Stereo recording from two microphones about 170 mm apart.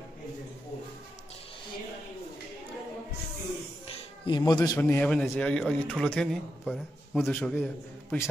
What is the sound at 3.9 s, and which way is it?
A man's voice, 25° left (ahead or behind).